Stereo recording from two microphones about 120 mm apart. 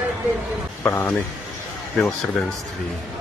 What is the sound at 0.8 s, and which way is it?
Speech, 20° left (ahead or behind).